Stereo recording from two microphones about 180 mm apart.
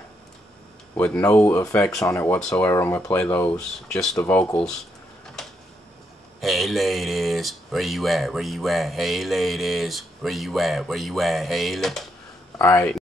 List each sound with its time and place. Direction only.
0.9 s speech: 5° left (ahead or behind)
1.4 s speech: 15° left (ahead or behind)
6.4 s speech: centre (ahead or behind)
12.5 s speech: 15° left (ahead or behind)